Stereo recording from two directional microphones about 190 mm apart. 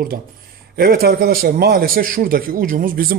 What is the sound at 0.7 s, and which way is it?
A man's voice, 50° right (ahead or behind).